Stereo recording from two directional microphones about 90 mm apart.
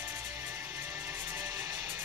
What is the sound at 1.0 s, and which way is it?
Music, 25° right (ahead or behind).